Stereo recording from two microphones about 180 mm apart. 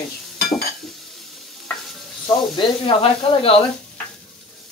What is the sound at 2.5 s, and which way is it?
Speech, 30° left (ahead or behind).